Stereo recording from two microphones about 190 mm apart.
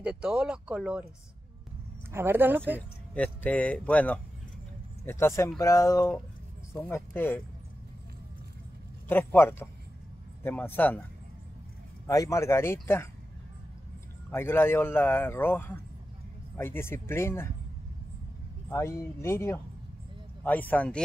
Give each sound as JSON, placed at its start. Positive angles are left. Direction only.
{"t": 0.0, "sound": "speech", "side_deg": -5}
{"t": 2.1, "sound": "speech", "side_deg": -10}
{"t": 3.2, "sound": "a man's voice", "side_deg": 10}
{"t": 9.0, "sound": "a man's voice", "side_deg": 10}
{"t": 12.1, "sound": "a man's voice", "side_deg": 15}
{"t": 14.3, "sound": "a man's voice", "side_deg": 10}
{"t": 18.7, "sound": "a man's voice", "side_deg": 15}